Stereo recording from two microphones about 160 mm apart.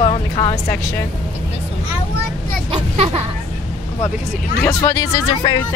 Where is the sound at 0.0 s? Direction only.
25° left (ahead or behind).